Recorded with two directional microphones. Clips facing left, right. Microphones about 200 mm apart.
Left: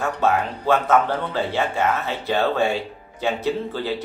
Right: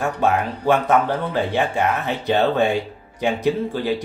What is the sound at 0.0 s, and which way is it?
Speech, 15° right (ahead or behind).